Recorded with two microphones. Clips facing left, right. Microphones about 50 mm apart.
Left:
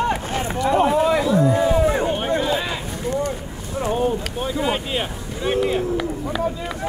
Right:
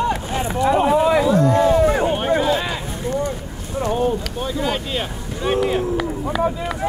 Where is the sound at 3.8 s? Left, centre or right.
Centre.